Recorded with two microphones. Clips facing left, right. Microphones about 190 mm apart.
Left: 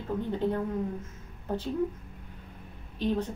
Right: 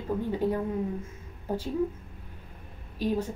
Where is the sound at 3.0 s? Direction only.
10° right (ahead or behind).